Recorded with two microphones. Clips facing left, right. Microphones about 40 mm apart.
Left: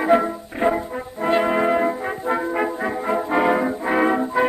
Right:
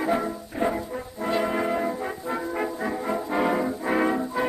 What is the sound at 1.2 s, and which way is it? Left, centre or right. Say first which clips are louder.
Brass instrument: left 7 dB; left.